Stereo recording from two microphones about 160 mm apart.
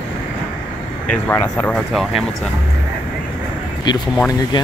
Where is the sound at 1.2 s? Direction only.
10° left (ahead or behind).